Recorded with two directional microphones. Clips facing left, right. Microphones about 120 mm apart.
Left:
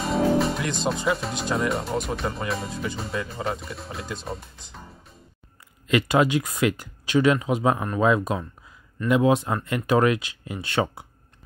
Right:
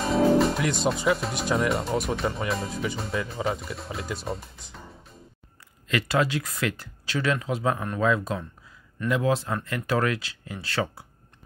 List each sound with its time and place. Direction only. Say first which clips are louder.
0.0 s speech: right 1 dB; centre (ahead or behind)
5.9 s speech: left 4 dB; 15° left (ahead or behind)